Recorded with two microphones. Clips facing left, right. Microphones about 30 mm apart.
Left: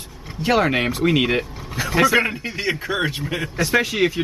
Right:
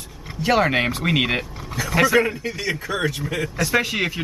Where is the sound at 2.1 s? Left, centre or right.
Left.